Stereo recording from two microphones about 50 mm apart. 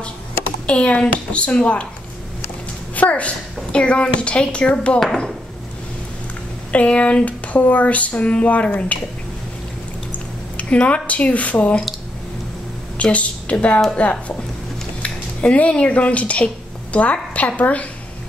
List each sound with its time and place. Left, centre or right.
0.7 s speech: left
3.0 s speech: left
6.7 s speech: left
10.1 s speech: left
13.0 s speech: left